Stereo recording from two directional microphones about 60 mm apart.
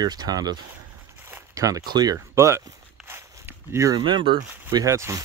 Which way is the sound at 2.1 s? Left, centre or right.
Right.